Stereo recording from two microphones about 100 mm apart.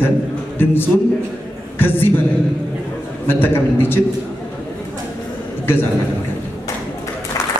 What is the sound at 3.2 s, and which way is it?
Speech, 20° left (ahead or behind).